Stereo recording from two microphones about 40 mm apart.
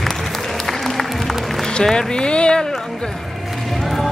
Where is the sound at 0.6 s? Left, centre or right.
Centre.